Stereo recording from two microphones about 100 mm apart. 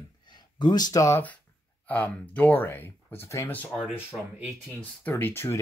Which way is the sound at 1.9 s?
15° left (ahead or behind).